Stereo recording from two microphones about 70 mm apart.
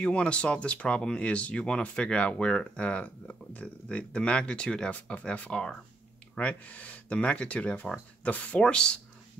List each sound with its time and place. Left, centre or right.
0.0 s speech: centre